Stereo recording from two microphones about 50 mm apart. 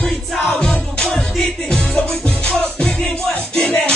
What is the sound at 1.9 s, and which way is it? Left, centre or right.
Music, left.